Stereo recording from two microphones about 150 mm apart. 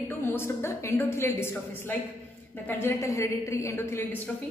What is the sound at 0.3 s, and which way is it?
A woman's voice, 15° left (ahead or behind).